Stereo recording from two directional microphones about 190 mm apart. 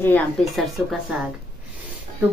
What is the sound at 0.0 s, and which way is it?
Speech, 5° left (ahead or behind).